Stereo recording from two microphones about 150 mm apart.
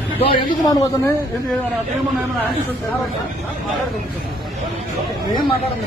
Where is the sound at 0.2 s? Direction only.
35° left (ahead or behind).